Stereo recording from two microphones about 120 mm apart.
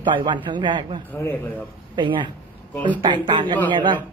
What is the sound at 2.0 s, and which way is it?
A man's voice, 40° right (ahead or behind).